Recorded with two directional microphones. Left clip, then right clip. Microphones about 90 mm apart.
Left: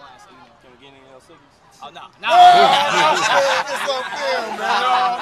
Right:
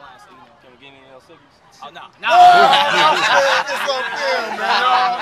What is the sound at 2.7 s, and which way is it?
Speech, 15° right (ahead or behind).